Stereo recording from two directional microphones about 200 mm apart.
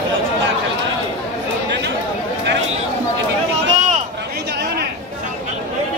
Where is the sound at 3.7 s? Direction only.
35° right (ahead or behind).